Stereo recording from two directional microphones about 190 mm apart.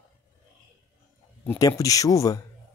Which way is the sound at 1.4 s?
15° left (ahead or behind).